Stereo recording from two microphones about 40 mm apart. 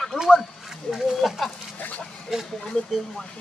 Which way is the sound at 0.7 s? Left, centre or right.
Centre.